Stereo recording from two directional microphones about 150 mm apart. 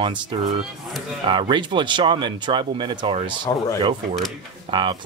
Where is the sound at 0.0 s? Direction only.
35° right (ahead or behind).